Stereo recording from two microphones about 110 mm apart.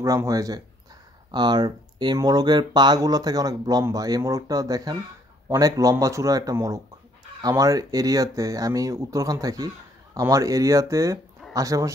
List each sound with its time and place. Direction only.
0.0 s speech: 30° right (ahead or behind)